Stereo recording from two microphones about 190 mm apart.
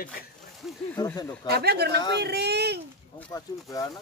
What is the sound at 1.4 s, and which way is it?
Speech, 60° right (ahead or behind).